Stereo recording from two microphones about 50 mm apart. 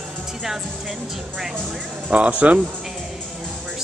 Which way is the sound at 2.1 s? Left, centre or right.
Right.